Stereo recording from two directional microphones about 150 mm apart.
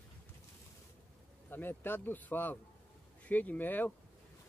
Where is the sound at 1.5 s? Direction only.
15° left (ahead or behind).